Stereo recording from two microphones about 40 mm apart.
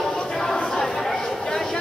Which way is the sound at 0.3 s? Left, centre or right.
Centre.